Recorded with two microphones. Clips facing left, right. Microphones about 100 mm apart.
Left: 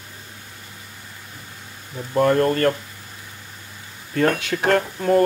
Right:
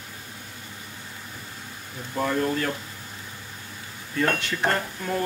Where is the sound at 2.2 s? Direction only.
65° left (ahead or behind).